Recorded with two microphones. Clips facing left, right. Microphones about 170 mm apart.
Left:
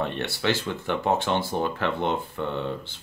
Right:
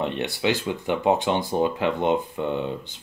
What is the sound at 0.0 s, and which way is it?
Speech, 15° right (ahead or behind).